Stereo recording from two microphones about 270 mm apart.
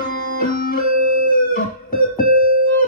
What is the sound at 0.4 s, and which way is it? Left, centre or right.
Music, left.